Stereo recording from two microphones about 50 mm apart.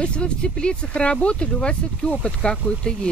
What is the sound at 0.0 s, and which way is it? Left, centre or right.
Speech, left.